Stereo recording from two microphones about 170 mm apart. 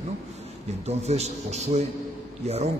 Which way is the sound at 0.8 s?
40° right (ahead or behind).